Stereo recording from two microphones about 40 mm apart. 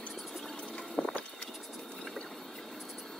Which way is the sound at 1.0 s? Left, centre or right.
Left.